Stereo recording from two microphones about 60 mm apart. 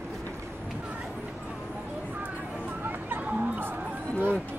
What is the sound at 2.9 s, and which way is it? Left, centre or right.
Chatter, right.